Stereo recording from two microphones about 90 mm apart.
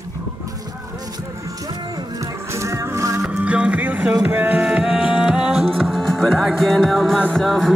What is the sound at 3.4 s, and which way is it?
Music, 15° right (ahead or behind).